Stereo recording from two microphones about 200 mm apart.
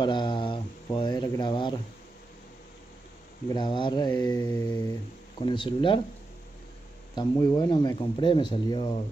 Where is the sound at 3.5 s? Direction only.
20° left (ahead or behind).